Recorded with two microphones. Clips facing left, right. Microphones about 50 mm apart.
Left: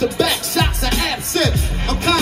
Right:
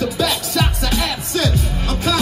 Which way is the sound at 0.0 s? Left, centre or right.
Left.